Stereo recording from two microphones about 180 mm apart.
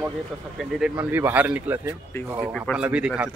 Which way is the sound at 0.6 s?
Centre (ahead or behind).